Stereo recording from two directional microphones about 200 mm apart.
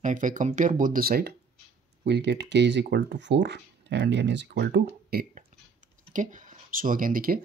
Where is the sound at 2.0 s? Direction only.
60° right (ahead or behind).